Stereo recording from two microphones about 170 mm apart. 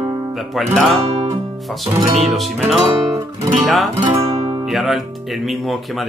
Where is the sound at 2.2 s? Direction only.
Centre (ahead or behind).